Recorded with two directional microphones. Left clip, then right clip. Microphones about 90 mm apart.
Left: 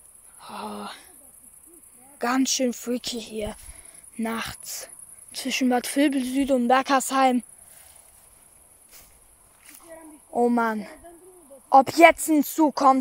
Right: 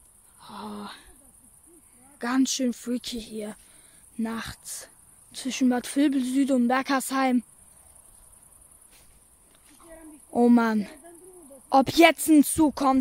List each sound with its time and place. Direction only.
0.4 s a sound: 5° right (ahead or behind)
2.1 s speech: centre (ahead or behind); by 6.7 s 20° right (ahead or behind)
6.7 s speech: 5° right (ahead or behind)
10.5 s a woman's voice: 75° right (ahead or behind); by 12.8 s 45° right (ahead or behind)